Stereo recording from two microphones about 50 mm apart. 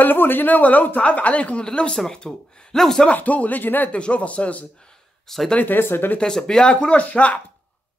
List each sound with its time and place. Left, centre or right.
0.0 s speech: left; by 3.1 s centre
3.1 s speech: left
4.0 s speech: left
5.6 s speech: left
6.1 s speech: centre